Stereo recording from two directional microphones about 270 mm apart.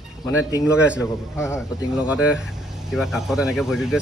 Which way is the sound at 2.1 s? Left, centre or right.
Centre.